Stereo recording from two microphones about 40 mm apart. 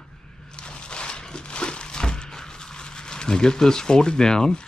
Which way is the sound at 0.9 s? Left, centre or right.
Left.